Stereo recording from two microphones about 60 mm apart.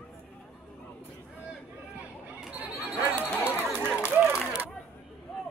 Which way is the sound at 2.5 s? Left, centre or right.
Right.